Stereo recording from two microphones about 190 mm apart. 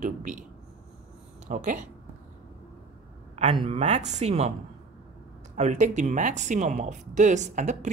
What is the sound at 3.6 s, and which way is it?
Speech, 35° right (ahead or behind).